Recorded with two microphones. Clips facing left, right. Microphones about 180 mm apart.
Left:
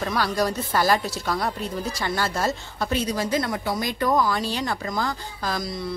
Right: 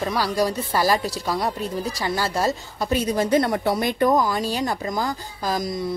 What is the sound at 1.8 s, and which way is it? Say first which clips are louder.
Speech: right 1 dB; 35° right (ahead or behind).